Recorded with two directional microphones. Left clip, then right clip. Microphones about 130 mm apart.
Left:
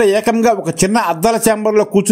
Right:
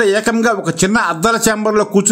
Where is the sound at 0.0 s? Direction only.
20° left (ahead or behind).